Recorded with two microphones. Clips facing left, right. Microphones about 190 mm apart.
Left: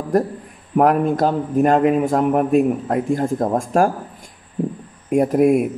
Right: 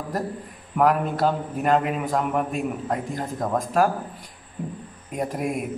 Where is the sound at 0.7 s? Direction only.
45° left (ahead or behind).